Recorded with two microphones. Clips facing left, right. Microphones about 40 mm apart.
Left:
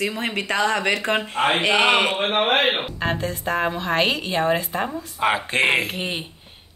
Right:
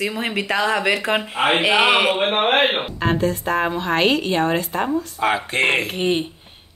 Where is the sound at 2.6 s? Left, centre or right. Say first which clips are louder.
Right 2 dB; centre.